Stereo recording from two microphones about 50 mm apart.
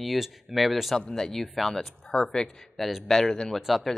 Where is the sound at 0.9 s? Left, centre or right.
Centre.